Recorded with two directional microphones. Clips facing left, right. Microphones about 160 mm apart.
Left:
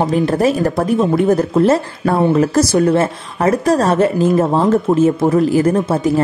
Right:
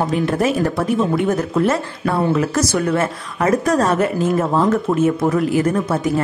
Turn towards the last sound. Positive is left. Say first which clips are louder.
# left 4 dB
turn(degrees=30)  # may be behind; listen again after turning